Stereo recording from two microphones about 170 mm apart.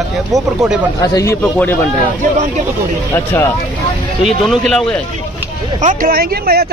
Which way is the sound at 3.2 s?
15° left (ahead or behind).